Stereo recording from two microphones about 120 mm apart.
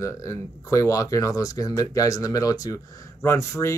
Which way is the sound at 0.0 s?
25° left (ahead or behind).